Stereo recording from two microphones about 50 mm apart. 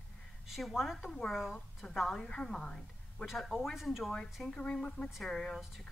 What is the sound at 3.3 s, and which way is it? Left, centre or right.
Speech, centre.